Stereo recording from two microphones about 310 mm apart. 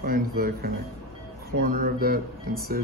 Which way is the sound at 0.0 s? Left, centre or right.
Right.